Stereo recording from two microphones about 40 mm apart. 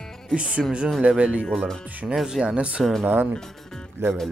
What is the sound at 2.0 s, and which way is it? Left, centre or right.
Speech, centre.